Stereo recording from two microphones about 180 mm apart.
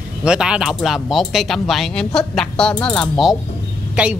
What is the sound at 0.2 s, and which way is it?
A woman's voice, 5° right (ahead or behind).